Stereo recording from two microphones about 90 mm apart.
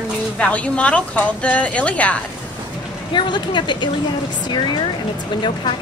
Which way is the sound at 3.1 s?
60° left (ahead or behind).